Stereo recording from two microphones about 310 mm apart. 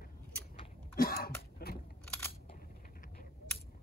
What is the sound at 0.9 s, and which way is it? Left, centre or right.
Cough, left.